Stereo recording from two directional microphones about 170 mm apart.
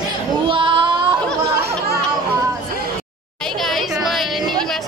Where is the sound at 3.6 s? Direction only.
Centre (ahead or behind).